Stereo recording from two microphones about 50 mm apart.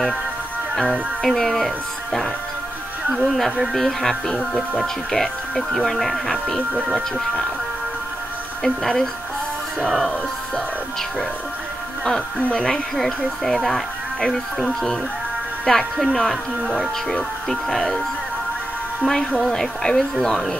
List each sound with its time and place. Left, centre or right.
1.2 s speech: centre
3.1 s speech: centre
8.6 s speech: centre
12.4 s speech: left
12.6 s speech: centre
19.0 s speech: centre